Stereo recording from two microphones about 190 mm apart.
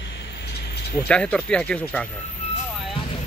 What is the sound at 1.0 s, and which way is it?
Speech, 5° left (ahead or behind).